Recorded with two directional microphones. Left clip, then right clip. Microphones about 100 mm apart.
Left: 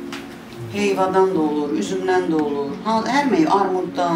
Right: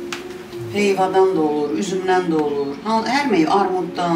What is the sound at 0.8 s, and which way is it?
Speech, 15° left (ahead or behind).